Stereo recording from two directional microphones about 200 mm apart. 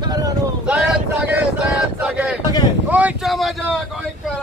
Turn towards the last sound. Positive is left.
turn(degrees=0)  # may be behind; listen again after turning